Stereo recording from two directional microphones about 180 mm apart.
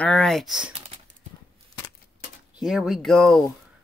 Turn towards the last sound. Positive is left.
turn(degrees=0)  # may be behind; listen again after turning